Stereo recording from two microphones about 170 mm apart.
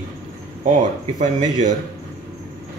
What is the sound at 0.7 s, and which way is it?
Speech, 45° right (ahead or behind).